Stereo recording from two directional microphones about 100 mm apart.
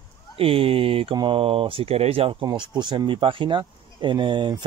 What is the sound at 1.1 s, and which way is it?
Speech, 60° right (ahead or behind).